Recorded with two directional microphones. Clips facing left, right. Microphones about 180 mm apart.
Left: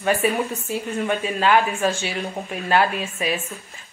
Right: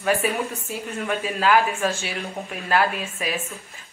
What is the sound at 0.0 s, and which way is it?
Speech, centre (ahead or behind).